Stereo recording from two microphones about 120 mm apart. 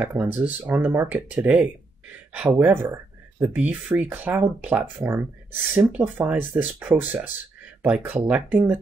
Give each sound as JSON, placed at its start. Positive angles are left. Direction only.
{"t": 0.0, "sound": "speech", "side_deg": -15}